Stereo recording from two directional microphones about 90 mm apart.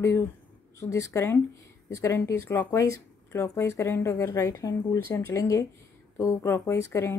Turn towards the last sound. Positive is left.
turn(degrees=30)  # may be behind; listen again after turning